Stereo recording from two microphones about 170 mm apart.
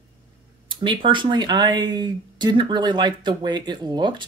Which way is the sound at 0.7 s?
30° right (ahead or behind).